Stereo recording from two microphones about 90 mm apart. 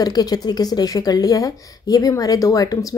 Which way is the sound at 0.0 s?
45° left (ahead or behind).